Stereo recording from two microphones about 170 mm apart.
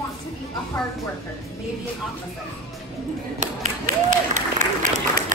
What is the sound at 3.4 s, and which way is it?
Applause, 45° right (ahead or behind).